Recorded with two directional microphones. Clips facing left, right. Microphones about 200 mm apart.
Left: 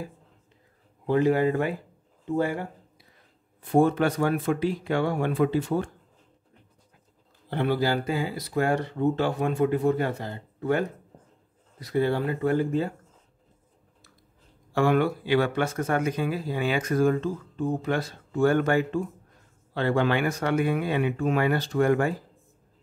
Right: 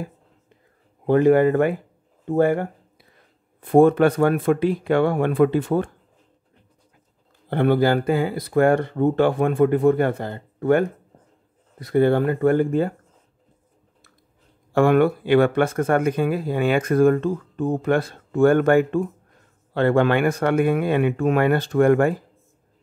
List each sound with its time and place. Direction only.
1.0 s speech: 55° right (ahead or behind)
2.2 s a sound: 55° right (ahead or behind)
3.6 s speech: 55° right (ahead or behind)
7.4 s speech: 55° right (ahead or behind)
14.7 s speech: 55° right (ahead or behind)